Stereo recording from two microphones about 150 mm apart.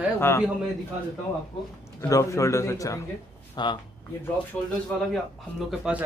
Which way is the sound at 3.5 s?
30° left (ahead or behind).